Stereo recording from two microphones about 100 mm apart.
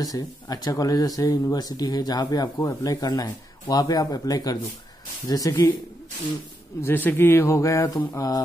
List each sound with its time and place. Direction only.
0.0 s speech: 40° left (ahead or behind)
6.8 s speech: 20° left (ahead or behind); by 8.4 s 35° left (ahead or behind)